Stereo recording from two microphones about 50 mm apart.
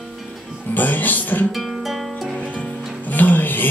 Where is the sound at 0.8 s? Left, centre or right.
Left.